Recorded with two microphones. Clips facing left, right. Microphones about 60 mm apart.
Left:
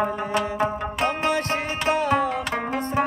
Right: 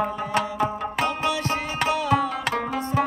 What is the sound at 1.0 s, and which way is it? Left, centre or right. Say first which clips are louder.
Music: left 2 dB; left.